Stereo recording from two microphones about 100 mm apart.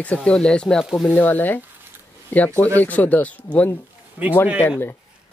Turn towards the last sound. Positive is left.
turn(degrees=20)  # may be behind; listen again after turning